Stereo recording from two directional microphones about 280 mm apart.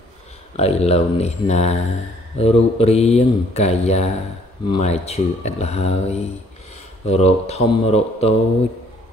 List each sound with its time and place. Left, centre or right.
0.6 s speech: left